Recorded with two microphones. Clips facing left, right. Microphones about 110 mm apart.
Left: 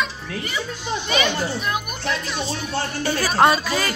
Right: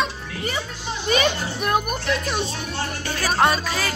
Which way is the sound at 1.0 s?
40° right (ahead or behind).